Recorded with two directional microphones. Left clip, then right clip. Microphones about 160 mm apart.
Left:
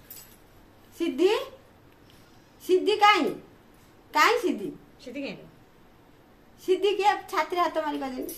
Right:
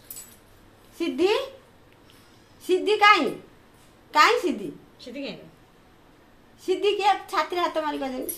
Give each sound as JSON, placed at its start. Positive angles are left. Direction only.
{"t": 0.9, "sound": "speech", "side_deg": -20}
{"t": 2.6, "sound": "a woman's voice", "side_deg": -20}
{"t": 5.0, "sound": "a woman's voice", "side_deg": 0}
{"t": 6.6, "sound": "a woman's voice", "side_deg": -20}